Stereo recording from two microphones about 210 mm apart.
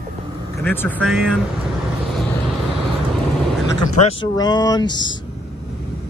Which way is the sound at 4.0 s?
20° left (ahead or behind).